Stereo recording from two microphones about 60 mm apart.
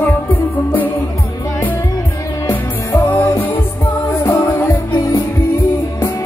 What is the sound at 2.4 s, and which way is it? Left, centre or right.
Music, left.